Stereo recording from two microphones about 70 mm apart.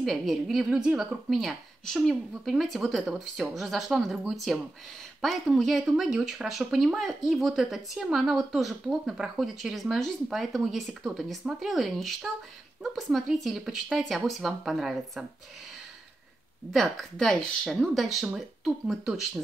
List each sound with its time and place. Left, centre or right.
0.0 s speech: centre
0.7 s speech: centre
16.7 s speech: centre